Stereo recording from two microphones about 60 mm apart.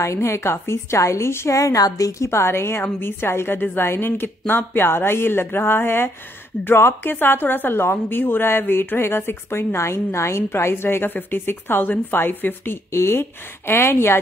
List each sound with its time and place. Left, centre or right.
0.0 s a woman's voice: left
1.5 s a woman's voice: left
12.9 s a woman's voice: left